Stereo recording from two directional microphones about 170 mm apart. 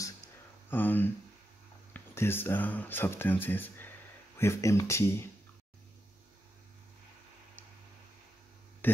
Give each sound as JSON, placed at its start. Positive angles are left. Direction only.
{"t": 0.7, "sound": "speech", "side_deg": 10}
{"t": 8.8, "sound": "speech", "side_deg": 10}